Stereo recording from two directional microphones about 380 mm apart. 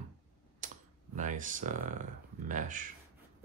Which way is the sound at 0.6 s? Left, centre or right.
Right.